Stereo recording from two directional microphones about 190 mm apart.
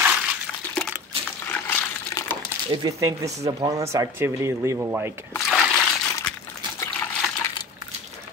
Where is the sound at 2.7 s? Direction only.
20° right (ahead or behind).